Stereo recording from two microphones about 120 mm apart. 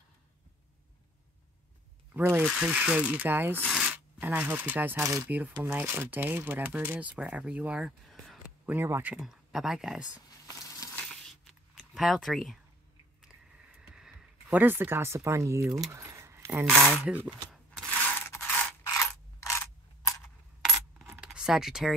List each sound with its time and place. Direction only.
2.1 s speech: 15° right (ahead or behind)
2.4 s speech: 5° right (ahead or behind)
5.0 s speech: 30° right (ahead or behind)
5.6 s speech: 15° right (ahead or behind)
8.6 s speech: 20° right (ahead or behind)
9.1 s speech: 5° right (ahead or behind)
11.0 s a sound: 5° left (ahead or behind)
13.7 s speech: 5° right (ahead or behind); by 15.8 s 25° right (ahead or behind)
15.9 s keys jangling: 25° right (ahead or behind)
16.7 s speech: 15° right (ahead or behind)
18.0 s mechanisms: 20° left (ahead or behind)
20.6 s coin: centre (ahead or behind)
21.2 s a sound: 5° right (ahead or behind)